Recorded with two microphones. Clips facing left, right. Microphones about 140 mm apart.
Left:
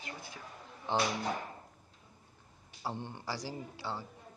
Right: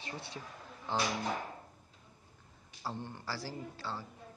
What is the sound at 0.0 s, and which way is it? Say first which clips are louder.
Speech: right 2 dB; 25° right (ahead or behind).